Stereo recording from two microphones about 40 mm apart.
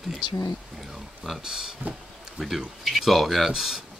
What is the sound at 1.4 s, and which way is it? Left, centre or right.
Speech, centre.